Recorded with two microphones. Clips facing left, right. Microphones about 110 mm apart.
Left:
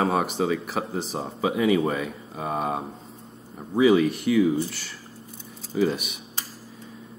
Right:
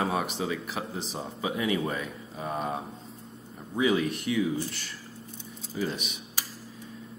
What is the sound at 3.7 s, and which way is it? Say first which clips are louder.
Speech: left 7 dB; centre (ahead or behind).